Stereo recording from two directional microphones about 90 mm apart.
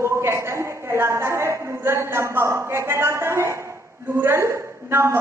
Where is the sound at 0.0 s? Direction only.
30° right (ahead or behind).